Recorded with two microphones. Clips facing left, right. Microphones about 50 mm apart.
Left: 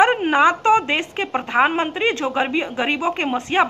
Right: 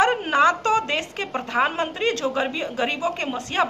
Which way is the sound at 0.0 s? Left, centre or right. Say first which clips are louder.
Left 3 dB; left.